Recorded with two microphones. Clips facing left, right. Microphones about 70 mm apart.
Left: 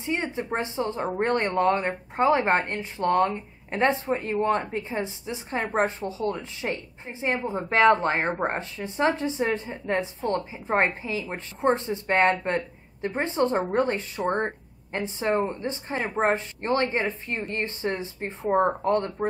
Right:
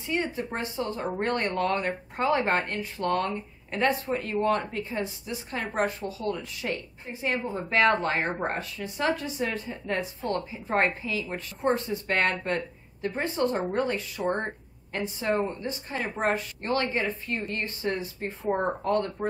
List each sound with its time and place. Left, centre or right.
0.0 s speech: left